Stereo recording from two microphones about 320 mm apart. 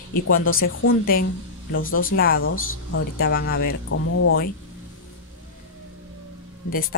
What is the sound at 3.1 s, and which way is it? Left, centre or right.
Speech, left.